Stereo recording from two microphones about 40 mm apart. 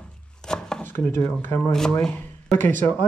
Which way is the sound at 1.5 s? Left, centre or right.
Left.